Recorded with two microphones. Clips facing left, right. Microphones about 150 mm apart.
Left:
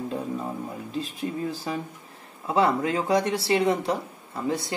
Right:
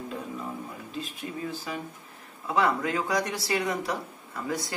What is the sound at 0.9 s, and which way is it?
Speech, 35° left (ahead or behind).